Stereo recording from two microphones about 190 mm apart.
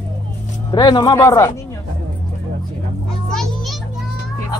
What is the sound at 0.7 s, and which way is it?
Speech, 20° left (ahead or behind).